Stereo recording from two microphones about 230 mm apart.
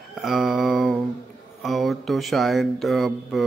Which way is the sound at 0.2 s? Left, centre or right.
Centre.